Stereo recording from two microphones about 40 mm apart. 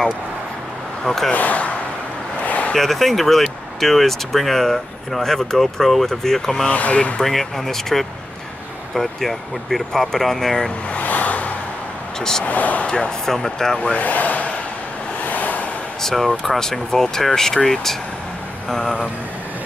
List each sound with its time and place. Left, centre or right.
1.0 s speech: centre
1.3 s speech: left
2.4 s a sound: left
2.7 s speech: centre
6.7 s speech: left
7.2 s speech: centre
10.9 s vehicle: left
12.2 s speech: centre
12.4 s speech: left
12.8 s speech: left
13.2 s speech: centre
13.9 s speech: left
15.2 s waves: left
16.0 s speech: centre